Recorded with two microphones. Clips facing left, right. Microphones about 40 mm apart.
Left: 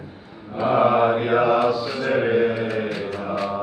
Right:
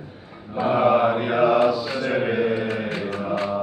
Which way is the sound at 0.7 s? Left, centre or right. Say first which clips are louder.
Left 1 dB; centre.